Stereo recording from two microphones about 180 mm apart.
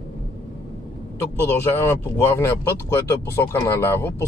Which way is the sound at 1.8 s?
15° left (ahead or behind).